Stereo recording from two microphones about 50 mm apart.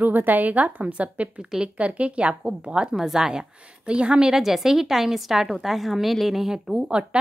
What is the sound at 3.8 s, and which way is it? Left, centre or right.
A woman's voice, right.